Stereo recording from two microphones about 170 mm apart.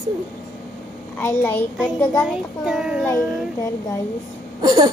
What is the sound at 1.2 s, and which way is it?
Speech, 10° left (ahead or behind).